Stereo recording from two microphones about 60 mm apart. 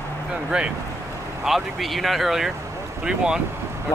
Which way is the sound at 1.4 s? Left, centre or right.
Centre.